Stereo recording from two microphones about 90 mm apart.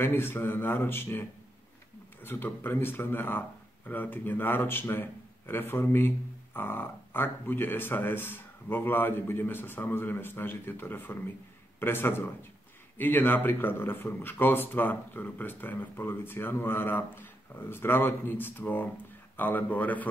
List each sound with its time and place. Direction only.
0.0 s speech: 25° left (ahead or behind)
2.2 s speech: 25° left (ahead or behind)